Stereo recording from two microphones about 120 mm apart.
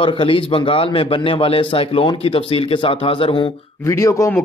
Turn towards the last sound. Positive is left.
turn(degrees=25)  # may be behind; listen again after turning